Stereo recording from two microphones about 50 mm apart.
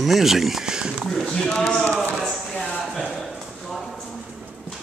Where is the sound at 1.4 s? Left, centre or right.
Left.